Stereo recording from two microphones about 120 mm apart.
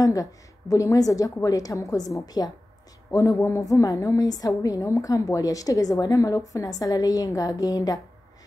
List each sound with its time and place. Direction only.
0.0 s a woman's voice: 30° left (ahead or behind)